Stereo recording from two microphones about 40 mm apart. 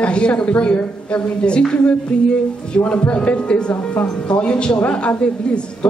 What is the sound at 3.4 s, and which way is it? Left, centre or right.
Speech, left.